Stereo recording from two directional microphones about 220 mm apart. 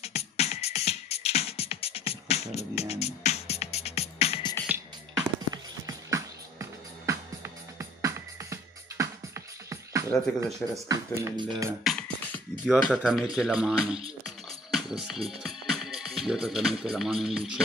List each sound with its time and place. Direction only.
0.0 s music: 30° left (ahead or behind)
4.6 s music: 15° right (ahead or behind)
10.7 s speech: 15° right (ahead or behind)
11.8 s speech: centre (ahead or behind)
14.7 s music: centre (ahead or behind)
16.9 s speech: centre (ahead or behind)